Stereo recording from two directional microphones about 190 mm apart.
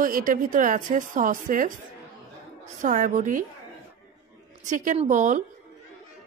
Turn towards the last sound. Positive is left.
turn(degrees=-40)  # may be behind; listen again after turning